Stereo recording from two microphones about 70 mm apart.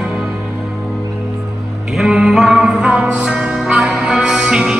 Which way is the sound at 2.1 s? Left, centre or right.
Centre.